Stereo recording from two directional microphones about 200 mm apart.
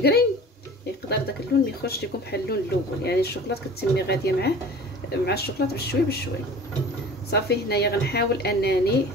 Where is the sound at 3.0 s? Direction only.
50° left (ahead or behind).